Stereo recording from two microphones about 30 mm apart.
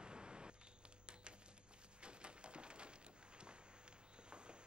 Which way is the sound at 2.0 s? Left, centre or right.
Right.